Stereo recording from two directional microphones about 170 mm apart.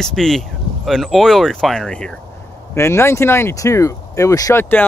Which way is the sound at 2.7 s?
15° left (ahead or behind).